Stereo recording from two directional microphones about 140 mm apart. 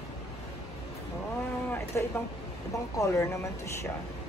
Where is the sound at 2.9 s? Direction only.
20° left (ahead or behind).